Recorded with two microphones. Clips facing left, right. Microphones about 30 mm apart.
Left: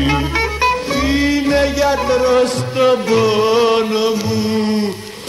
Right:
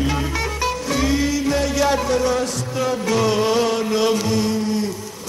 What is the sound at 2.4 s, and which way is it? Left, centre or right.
Music, left.